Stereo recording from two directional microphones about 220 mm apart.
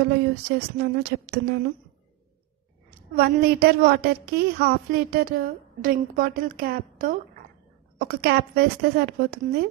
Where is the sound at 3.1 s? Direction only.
45° right (ahead or behind).